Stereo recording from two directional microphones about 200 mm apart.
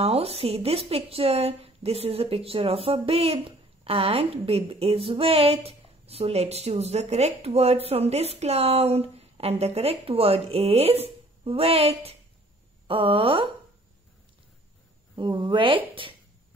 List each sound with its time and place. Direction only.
0.0 s a woman's voice: 30° right (ahead or behind)
15.1 s a woman's voice: 20° right (ahead or behind)